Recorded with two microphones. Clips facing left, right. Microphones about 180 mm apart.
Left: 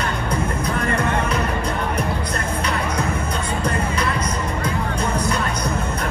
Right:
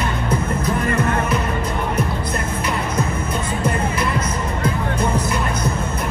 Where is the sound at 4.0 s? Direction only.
25° right (ahead or behind).